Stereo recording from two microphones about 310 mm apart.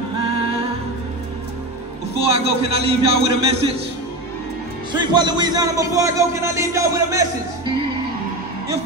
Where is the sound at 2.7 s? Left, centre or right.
Centre.